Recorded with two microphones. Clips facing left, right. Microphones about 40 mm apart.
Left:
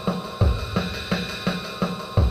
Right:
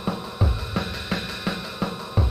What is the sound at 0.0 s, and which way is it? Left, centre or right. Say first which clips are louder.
Music: left 2 dB; centre.